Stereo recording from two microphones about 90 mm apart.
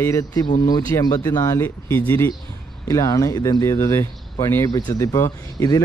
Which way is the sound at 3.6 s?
30° left (ahead or behind).